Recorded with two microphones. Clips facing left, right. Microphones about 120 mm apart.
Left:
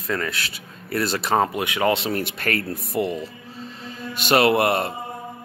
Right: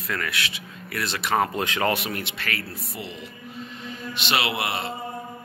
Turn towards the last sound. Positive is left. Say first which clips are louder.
# left 9 dB
turn(degrees=50)  # may be behind; listen again after turning